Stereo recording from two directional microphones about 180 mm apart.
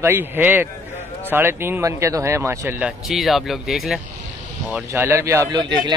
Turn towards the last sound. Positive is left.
turn(degrees=-25)  # may be behind; listen again after turning